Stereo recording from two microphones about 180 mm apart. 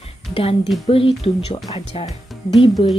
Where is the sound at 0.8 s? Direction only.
30° left (ahead or behind).